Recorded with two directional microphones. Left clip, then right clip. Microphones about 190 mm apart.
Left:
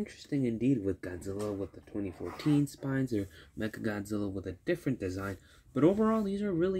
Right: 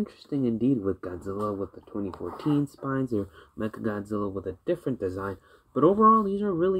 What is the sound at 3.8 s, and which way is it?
Speech, 30° left (ahead or behind).